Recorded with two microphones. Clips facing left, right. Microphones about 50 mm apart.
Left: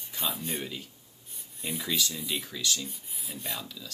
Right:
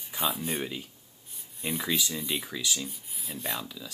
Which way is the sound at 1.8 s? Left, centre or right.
Centre.